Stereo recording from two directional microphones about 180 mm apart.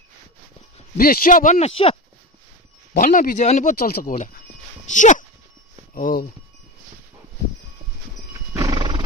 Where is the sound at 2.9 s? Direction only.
50° left (ahead or behind).